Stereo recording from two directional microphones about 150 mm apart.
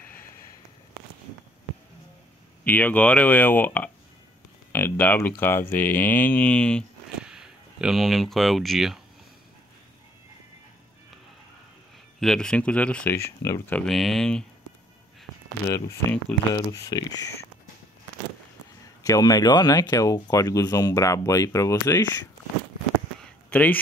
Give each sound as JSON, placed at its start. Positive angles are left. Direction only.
{"t": 0.0, "sound": "a sound", "side_deg": 15}
{"t": 2.6, "sound": "speech", "side_deg": 10}
{"t": 7.2, "sound": "speech", "side_deg": -5}
{"t": 12.2, "sound": "speech", "side_deg": 5}
{"t": 13.4, "sound": "speech", "side_deg": 20}
{"t": 13.7, "sound": "speech", "side_deg": 0}
{"t": 15.7, "sound": "speech", "side_deg": 20}
{"t": 19.0, "sound": "speech", "side_deg": 25}
{"t": 23.2, "sound": "a sound", "side_deg": 10}